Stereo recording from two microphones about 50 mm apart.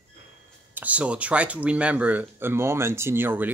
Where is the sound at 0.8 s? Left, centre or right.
Right.